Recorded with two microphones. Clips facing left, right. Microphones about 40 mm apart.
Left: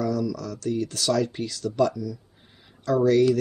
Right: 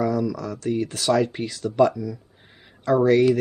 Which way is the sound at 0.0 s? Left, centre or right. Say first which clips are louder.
Right 3 dB; right.